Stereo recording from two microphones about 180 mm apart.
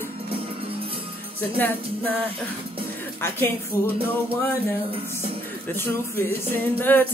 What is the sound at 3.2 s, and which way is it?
Music, 10° left (ahead or behind).